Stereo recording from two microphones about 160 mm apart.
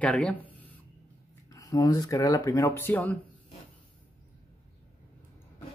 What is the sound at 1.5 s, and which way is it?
Speech, 25° left (ahead or behind).